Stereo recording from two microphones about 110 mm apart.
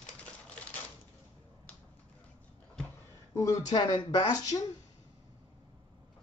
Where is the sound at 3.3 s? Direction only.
35° left (ahead or behind).